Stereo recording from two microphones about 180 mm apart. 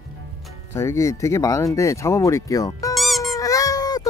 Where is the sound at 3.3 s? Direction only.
20° left (ahead or behind).